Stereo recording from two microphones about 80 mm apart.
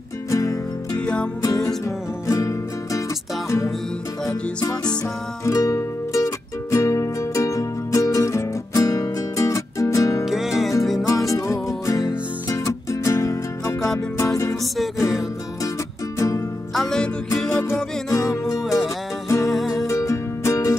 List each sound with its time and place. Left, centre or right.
0.3 s music: left
0.9 s music: centre
1.4 s music: left
4.3 s music: left
5.4 s music: left
10.2 s music: centre
11.2 s music: left
16.2 s music: left
16.7 s music: centre
19.9 s music: left